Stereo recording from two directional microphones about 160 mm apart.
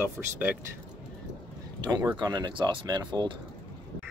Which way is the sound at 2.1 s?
25° right (ahead or behind).